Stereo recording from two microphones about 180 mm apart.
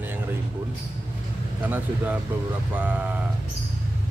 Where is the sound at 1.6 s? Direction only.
10° right (ahead or behind).